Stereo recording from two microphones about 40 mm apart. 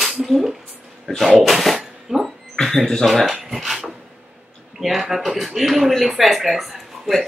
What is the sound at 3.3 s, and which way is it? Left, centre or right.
Speech, centre.